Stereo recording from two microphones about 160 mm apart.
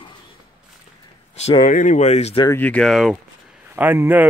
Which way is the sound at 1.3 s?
45° left (ahead or behind).